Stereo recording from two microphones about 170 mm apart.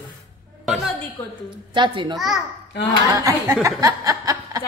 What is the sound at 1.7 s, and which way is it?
Speech, 25° right (ahead or behind).